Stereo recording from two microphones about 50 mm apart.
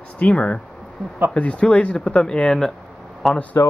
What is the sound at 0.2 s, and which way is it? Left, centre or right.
Speech, left.